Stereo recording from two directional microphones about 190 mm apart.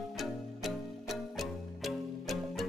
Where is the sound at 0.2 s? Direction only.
Centre (ahead or behind).